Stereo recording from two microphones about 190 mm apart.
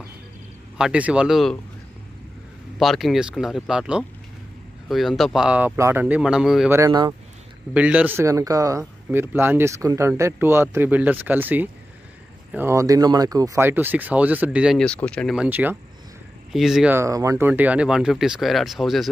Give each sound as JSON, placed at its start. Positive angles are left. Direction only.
{"t": 0.7, "sound": "speech", "side_deg": -5}
{"t": 2.8, "sound": "speech", "side_deg": 0}
{"t": 6.7, "sound": "speech", "side_deg": -20}
{"t": 7.7, "sound": "speech", "side_deg": -5}